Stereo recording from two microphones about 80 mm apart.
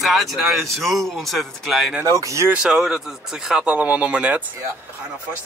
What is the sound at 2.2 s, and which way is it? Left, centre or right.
Speech, right.